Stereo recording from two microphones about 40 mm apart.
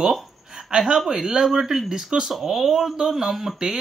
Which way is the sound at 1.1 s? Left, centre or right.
Centre.